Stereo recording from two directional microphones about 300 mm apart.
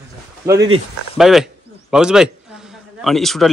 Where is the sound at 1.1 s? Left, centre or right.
Centre.